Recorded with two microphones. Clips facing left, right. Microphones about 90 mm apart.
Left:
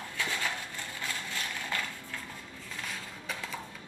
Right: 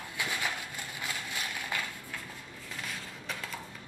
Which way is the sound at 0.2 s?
15° right (ahead or behind).